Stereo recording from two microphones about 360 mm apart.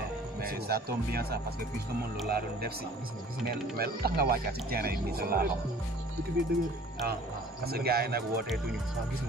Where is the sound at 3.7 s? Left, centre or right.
Right.